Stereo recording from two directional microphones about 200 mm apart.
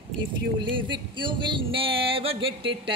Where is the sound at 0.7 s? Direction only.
25° right (ahead or behind).